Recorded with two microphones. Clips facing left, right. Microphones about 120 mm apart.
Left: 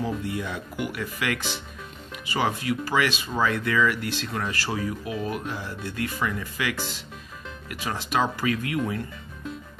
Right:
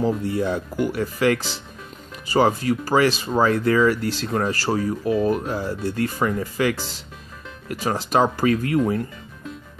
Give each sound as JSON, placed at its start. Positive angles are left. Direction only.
{"t": 0.0, "sound": "speech", "side_deg": -35}